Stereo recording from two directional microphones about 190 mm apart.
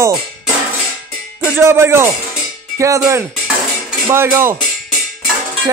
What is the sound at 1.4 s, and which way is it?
Speech, 10° right (ahead or behind).